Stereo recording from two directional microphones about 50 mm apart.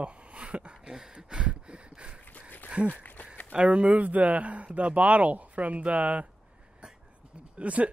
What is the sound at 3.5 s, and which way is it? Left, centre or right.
Speech, right.